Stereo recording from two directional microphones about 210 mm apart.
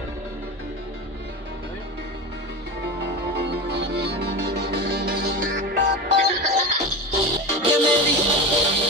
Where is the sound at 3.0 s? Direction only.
55° right (ahead or behind).